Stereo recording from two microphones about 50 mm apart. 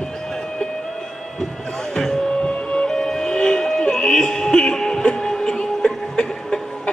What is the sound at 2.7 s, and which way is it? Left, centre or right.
Music, centre.